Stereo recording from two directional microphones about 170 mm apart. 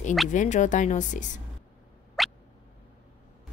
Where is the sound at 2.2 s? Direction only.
Centre (ahead or behind).